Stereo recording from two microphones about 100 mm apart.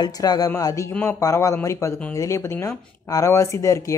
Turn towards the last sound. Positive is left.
turn(degrees=30)  # may be behind; listen again after turning